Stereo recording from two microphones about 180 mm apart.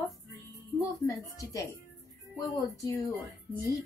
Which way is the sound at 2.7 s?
20° left (ahead or behind).